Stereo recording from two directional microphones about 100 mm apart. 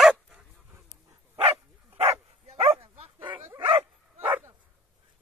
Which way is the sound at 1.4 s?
90° right.